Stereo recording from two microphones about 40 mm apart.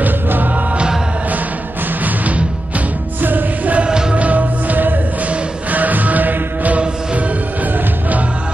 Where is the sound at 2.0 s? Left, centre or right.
Right.